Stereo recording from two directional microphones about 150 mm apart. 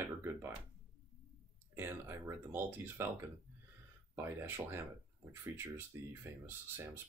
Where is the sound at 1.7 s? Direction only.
15° right (ahead or behind).